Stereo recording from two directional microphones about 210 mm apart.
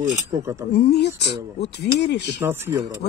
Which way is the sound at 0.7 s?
50° left (ahead or behind).